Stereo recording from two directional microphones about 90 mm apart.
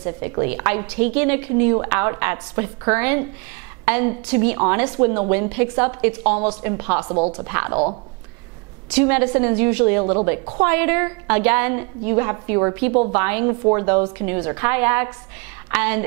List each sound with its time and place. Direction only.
0.0 s a woman's voice: 20° right (ahead or behind)
8.9 s a woman's voice: 15° right (ahead or behind)